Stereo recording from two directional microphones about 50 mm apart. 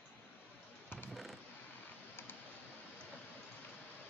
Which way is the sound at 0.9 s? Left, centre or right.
Left.